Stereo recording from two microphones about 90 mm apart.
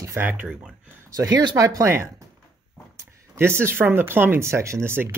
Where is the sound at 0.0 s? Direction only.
30° right (ahead or behind).